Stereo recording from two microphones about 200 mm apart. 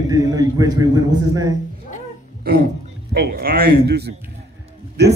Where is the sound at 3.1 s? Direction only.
50° right (ahead or behind).